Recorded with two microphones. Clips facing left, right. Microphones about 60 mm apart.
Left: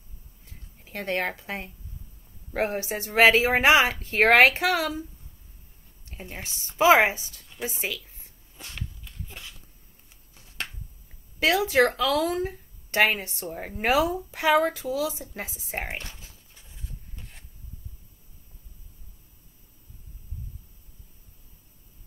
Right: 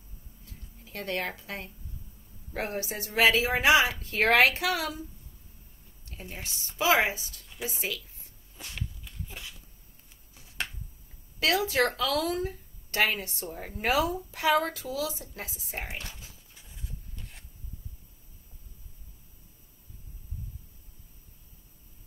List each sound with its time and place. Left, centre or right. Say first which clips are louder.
0.5 s speech: left 3 dB; left
6.0 s speech: left 3 dB; left
8.5 s a sound: even; centre
10.3 s finger snapping: even; centre
11.3 s speech: left 5 dB; left
16.0 s a sound: left 1 dB; centre